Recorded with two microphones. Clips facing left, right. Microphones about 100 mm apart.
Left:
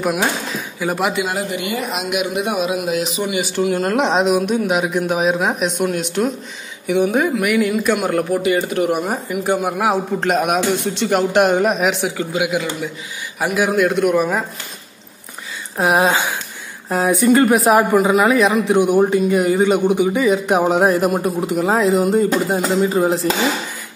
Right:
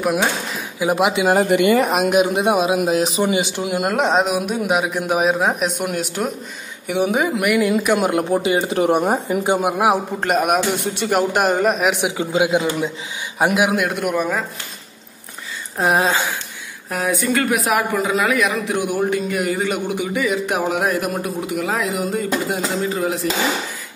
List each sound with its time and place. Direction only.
0.7 s speech: 15° right (ahead or behind)
1.3 s speech: 55° right (ahead or behind); by 3.4 s 30° right (ahead or behind)
3.5 s speech: 15° right (ahead or behind)
3.9 s speech: centre (ahead or behind)
5.2 s speech: centre (ahead or behind)
11.9 s speech: 20° right (ahead or behind)
13.4 s speech: 15° right (ahead or behind)
15.8 s a sound: 15° left (ahead or behind)
16.9 s a man's voice: 20° left (ahead or behind)